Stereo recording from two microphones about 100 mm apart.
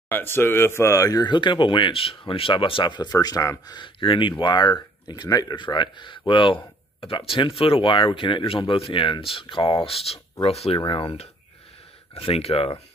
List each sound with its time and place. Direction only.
0.1 s speech: 20° left (ahead or behind); by 10.8 s 85° left
10.8 s speech: 60° left (ahead or behind)
12.1 s speech: 75° left (ahead or behind)